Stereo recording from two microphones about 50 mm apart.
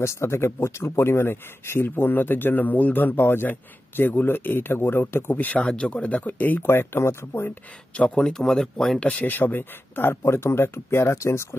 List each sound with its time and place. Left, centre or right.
0.0 s speech: left
5.5 s speech: left
6.6 s speech: left
7.9 s speech: left
9.0 s speech: left